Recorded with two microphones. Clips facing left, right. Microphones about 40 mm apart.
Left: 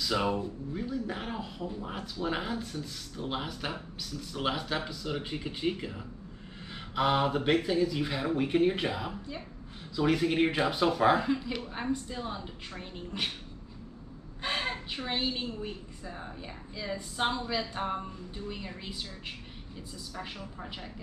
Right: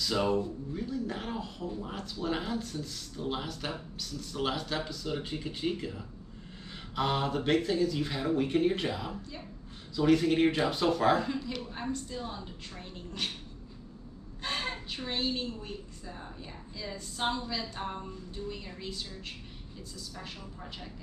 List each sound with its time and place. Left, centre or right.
0.0 s a woman's voice: centre
14.4 s a woman's voice: centre